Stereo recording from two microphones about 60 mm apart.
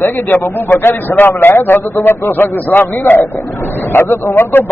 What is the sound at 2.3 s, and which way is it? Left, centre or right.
A man's voice, left.